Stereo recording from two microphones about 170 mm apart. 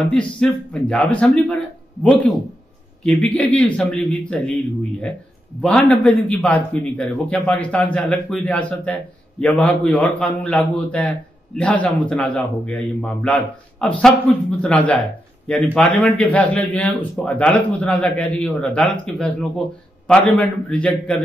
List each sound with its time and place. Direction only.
0.1 s a man's voice: 5° left (ahead or behind)
3.0 s a man's voice: 5° left (ahead or behind)
5.6 s a man's voice: 5° left (ahead or behind)